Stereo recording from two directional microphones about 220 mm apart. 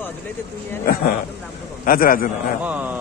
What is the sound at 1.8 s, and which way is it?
Speech, 40° left (ahead or behind).